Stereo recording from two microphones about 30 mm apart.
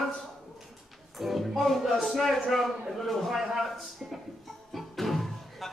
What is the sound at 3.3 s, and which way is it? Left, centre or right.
Speech, centre.